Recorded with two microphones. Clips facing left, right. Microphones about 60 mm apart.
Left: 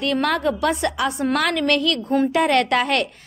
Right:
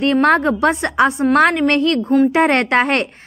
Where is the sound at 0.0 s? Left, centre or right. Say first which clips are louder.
Right 7 dB; right.